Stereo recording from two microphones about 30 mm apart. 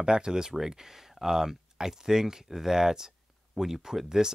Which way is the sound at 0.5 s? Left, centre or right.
Centre.